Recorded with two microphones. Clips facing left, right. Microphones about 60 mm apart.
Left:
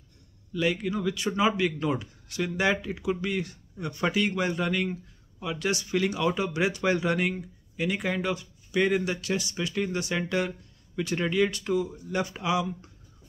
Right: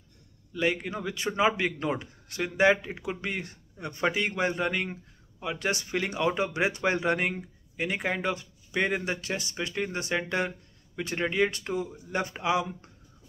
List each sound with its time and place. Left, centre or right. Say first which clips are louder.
0.5 s speech: left 1 dB; right